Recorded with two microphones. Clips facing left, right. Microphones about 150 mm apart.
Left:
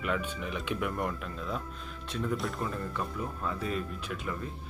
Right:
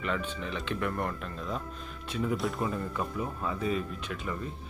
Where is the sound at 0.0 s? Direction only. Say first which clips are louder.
Even; 10° left (ahead or behind).